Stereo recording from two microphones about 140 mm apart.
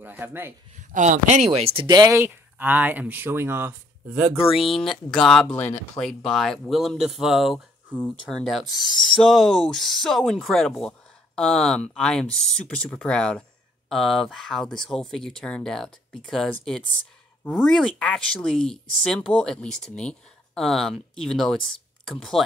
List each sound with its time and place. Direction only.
0.0 s speech: 15° right (ahead or behind)
0.9 s speech: 60° right (ahead or behind); by 4.4 s 15° right (ahead or behind)
5.1 s speech: 5° left (ahead or behind)